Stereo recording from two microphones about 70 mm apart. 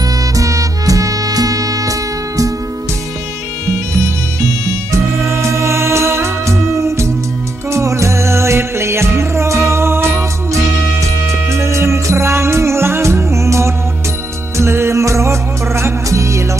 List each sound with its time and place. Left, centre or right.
0.4 s music: right
4.9 s music: right
7.7 s music: right
11.5 s music: right